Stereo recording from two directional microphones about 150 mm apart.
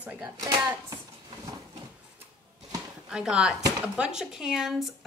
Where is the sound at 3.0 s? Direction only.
5° right (ahead or behind).